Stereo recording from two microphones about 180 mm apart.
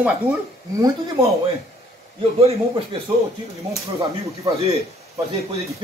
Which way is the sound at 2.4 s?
35° right (ahead or behind).